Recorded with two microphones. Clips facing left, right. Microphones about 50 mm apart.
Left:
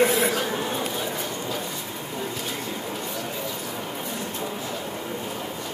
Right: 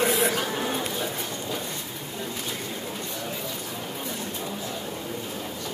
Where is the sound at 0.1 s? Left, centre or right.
Centre.